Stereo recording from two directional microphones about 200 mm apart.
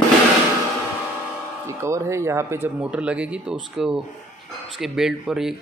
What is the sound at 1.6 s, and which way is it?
Speech, 15° right (ahead or behind).